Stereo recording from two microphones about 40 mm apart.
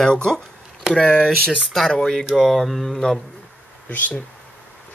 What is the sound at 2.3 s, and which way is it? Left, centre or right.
Speech, centre.